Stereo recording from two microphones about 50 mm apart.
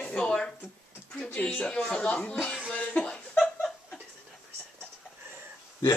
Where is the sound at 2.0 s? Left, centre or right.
Left.